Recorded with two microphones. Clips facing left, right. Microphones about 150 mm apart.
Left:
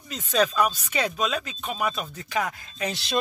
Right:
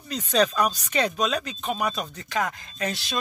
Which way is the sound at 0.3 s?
5° left (ahead or behind).